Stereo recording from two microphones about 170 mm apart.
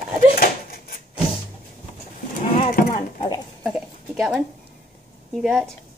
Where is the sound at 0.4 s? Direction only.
60° left (ahead or behind).